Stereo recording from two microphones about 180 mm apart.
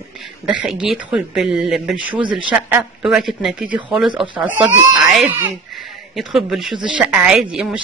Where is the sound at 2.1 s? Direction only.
25° right (ahead or behind).